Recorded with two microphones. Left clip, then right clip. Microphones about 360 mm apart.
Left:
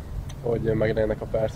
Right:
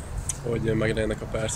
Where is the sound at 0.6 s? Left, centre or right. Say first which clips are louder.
Left 2 dB; left.